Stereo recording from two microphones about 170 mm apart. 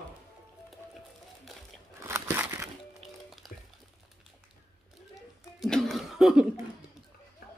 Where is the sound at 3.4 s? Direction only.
Centre (ahead or behind).